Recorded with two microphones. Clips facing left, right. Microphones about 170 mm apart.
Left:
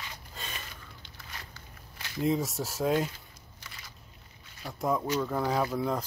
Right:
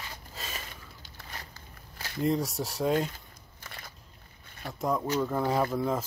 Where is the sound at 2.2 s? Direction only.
Centre (ahead or behind).